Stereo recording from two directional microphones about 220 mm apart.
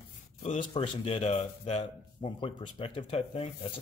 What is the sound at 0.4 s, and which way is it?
Speech, 30° left (ahead or behind).